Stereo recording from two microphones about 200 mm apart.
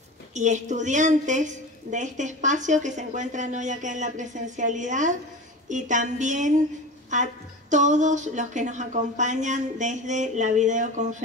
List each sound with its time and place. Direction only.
0.3 s a woman's voice: 35° right (ahead or behind)